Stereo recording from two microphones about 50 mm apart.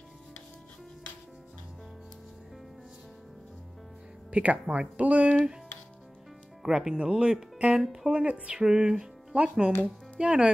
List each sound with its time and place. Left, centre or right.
4.3 s speech: right
6.6 s speech: centre
9.3 s speech: right